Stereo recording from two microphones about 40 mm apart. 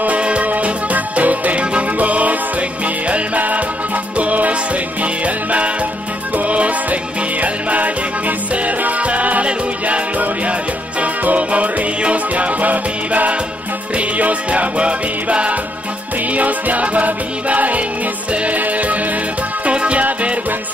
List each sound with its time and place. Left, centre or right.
0.0 s music: right
20.0 s music: right